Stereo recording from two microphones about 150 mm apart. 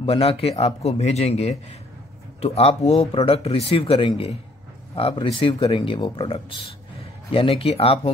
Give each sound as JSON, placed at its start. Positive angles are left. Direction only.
{"t": 0.0, "sound": "a man's voice", "side_deg": 40}